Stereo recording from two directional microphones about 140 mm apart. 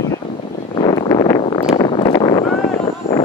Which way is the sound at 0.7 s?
40° left (ahead or behind).